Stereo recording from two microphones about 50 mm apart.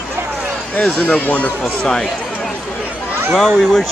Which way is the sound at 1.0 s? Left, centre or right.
Left.